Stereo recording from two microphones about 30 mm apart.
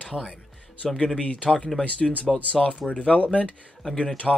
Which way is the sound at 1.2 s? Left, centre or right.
Left.